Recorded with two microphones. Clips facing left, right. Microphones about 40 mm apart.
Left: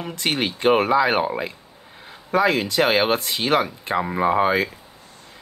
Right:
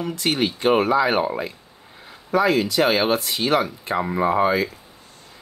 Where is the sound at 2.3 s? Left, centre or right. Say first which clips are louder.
Even; left.